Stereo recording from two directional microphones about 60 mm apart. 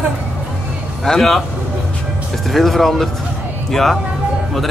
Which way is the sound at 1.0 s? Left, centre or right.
Centre.